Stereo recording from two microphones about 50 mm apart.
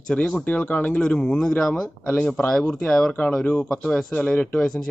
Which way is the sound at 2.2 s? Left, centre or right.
Left.